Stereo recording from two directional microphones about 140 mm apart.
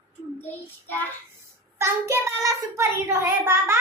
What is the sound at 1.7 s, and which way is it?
A child's voice, 20° right (ahead or behind).